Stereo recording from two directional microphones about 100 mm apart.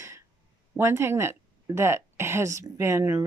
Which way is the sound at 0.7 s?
25° right (ahead or behind).